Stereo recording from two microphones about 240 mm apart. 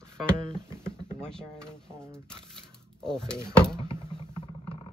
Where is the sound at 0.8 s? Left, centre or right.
Centre.